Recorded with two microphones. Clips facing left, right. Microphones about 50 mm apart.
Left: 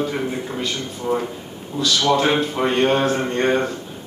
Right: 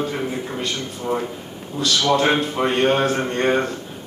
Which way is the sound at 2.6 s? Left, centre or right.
Centre.